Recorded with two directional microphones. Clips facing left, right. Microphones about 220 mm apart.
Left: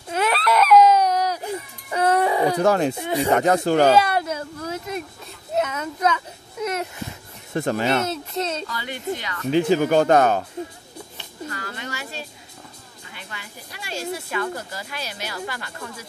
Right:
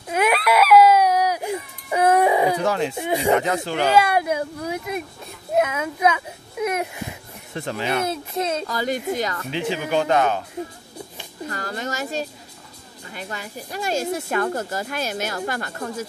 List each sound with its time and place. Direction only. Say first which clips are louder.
0.1 s baby cry: right 2 dB; 10° right (ahead or behind)
2.6 s speech: left 3 dB; 45° left (ahead or behind)
3.0 s speech: right 1 dB; 15° right (ahead or behind)
3.3 s speech: left 5 dB; 45° left (ahead or behind)
3.9 s a child's voice: right 1 dB; 10° right (ahead or behind)
7.5 s speech: left 5 dB; 50° left (ahead or behind)
8.0 s speech: right 1 dB; 10° right (ahead or behind)
8.6 s speech: right 5 dB; 40° right (ahead or behind)
9.5 s speech: left 10 dB; 40° left (ahead or behind)
11.4 s a woman's voice: right 4 dB; 40° right (ahead or behind)